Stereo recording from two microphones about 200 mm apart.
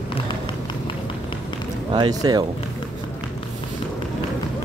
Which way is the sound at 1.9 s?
20° right (ahead or behind).